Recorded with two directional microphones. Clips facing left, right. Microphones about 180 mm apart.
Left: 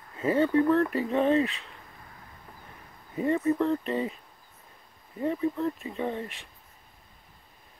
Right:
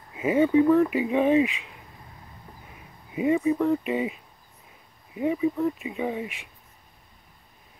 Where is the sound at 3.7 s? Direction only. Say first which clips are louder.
Right 3 dB; 10° right (ahead or behind).